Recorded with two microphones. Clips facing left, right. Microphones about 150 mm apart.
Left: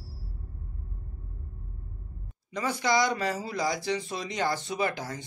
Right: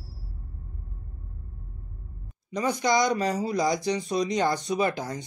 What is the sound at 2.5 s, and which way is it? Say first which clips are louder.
Speech: right 3 dB; 15° right (ahead or behind).